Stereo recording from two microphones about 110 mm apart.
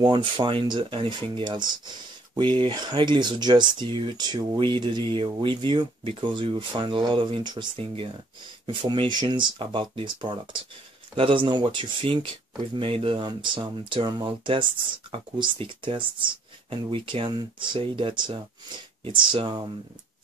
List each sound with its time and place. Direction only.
0.0 s speech: 50° right (ahead or behind)
8.8 s speech: 45° right (ahead or behind)